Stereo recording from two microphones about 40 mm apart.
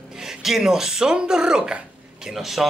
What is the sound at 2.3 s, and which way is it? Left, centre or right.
Speech, centre.